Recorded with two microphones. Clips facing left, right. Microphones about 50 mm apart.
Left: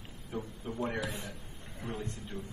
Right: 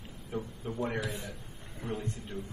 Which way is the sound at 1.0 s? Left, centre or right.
Left.